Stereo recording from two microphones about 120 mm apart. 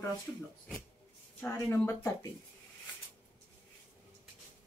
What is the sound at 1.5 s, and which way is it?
Speech, 20° left (ahead or behind).